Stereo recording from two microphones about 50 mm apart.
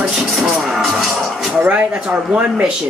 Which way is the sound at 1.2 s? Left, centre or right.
Centre.